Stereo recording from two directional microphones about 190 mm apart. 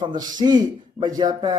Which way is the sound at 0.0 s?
20° right (ahead or behind).